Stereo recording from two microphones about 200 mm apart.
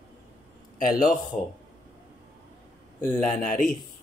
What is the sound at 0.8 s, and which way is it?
Speech, 45° left (ahead or behind).